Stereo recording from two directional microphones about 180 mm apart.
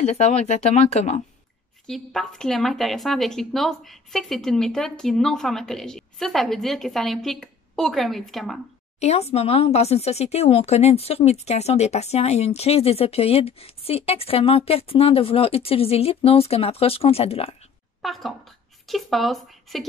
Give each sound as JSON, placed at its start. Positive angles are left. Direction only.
{"t": 0.0, "sound": "speech", "side_deg": 35}
{"t": 1.9, "sound": "speech", "side_deg": 5}
{"t": 9.0, "sound": "speech", "side_deg": 35}
{"t": 18.0, "sound": "speech", "side_deg": 0}